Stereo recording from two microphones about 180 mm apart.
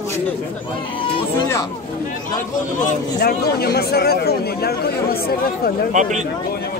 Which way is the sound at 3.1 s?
60° left (ahead or behind).